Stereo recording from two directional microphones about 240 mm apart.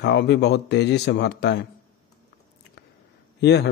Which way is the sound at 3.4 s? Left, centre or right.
Left.